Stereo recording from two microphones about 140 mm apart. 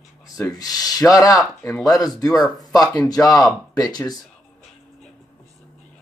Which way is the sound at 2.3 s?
Centre (ahead or behind).